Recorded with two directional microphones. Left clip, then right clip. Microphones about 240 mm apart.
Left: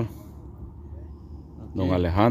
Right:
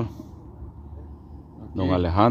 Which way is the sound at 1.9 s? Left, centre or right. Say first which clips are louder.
Right 2 dB; centre.